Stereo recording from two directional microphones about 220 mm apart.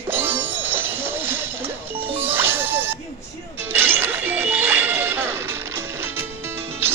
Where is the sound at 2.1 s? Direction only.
10° right (ahead or behind).